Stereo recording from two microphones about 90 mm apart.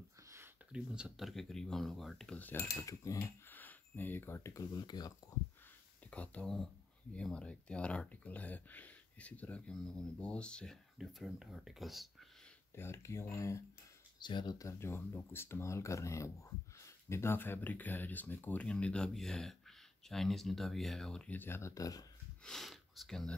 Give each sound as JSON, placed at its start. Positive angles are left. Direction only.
{"t": 0.7, "sound": "speech", "side_deg": -10}
{"t": 2.3, "sound": "speech", "side_deg": 20}
{"t": 2.7, "sound": "speech", "side_deg": 35}
{"t": 3.4, "sound": "speech", "side_deg": 20}
{"t": 4.7, "sound": "speech", "side_deg": 50}
{"t": 5.3, "sound": "speech", "side_deg": 35}
{"t": 6.0, "sound": "speech", "side_deg": 15}
{"t": 11.0, "sound": "speech", "side_deg": -5}
{"t": 12.7, "sound": "speech", "side_deg": 30}
{"t": 14.2, "sound": "speech", "side_deg": 55}
{"t": 14.6, "sound": "speech", "side_deg": 30}
{"t": 21.3, "sound": "speech", "side_deg": 25}
{"t": 22.4, "sound": "speech", "side_deg": 5}